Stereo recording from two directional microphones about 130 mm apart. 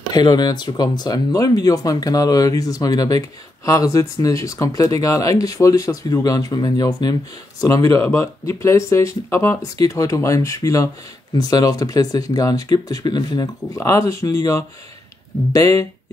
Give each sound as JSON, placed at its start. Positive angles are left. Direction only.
{"t": 0.1, "sound": "speech", "side_deg": 30}